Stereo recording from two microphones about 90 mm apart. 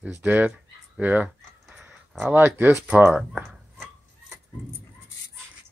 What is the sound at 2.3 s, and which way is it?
Speech, 25° right (ahead or behind).